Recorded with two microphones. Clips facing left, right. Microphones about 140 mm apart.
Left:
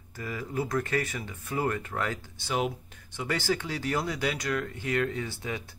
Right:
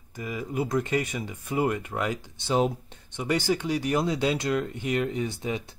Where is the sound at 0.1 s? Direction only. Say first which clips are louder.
Right 2 dB; 15° right (ahead or behind).